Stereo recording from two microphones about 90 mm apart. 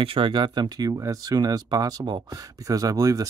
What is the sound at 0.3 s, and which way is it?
Speech, 50° right (ahead or behind).